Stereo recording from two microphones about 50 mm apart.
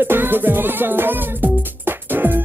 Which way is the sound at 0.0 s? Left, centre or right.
Right.